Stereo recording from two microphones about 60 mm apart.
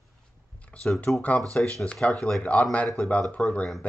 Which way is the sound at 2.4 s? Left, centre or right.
Left.